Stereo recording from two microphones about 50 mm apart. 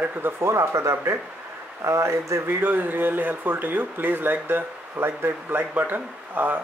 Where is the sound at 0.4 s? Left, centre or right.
Right.